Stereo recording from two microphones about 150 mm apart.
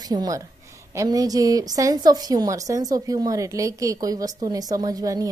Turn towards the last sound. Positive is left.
turn(degrees=-25)  # may be behind; listen again after turning